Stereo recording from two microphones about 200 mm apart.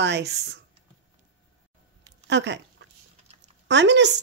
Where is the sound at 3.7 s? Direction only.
60° right (ahead or behind).